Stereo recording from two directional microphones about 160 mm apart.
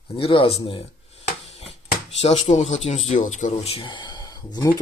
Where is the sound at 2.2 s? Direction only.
40° left (ahead or behind).